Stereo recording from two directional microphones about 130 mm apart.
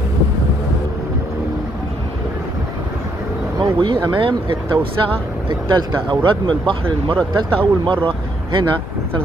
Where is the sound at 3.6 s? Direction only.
35° right (ahead or behind).